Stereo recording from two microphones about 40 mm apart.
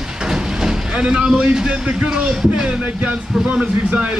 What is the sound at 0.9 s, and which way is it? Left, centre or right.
Speech, right.